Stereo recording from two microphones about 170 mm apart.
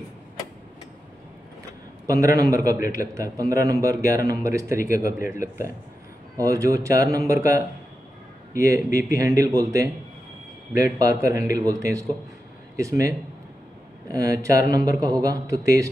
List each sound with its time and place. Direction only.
2.0 s speech: 20° right (ahead or behind)